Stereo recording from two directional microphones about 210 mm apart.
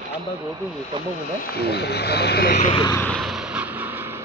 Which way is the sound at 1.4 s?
50° left (ahead or behind).